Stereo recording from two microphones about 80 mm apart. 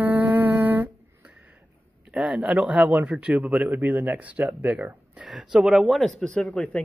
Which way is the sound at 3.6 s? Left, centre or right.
Right.